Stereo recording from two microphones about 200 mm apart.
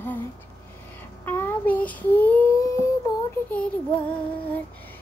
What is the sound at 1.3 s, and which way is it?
Child singing, 10° left (ahead or behind).